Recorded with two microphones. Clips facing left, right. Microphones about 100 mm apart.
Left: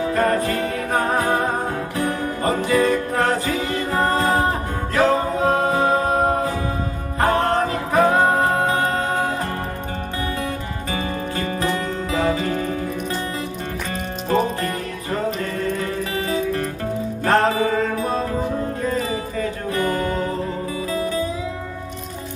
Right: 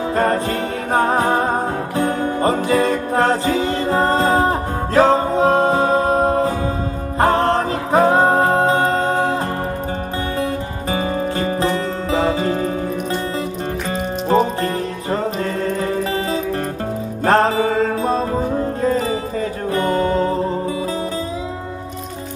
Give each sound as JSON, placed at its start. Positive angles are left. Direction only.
{"t": 0.0, "sound": "music", "side_deg": -30}
{"t": 10.4, "sound": "music", "side_deg": -30}
{"t": 14.3, "sound": "music", "side_deg": -30}